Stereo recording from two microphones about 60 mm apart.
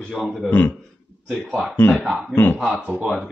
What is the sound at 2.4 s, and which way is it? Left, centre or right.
Speech, left.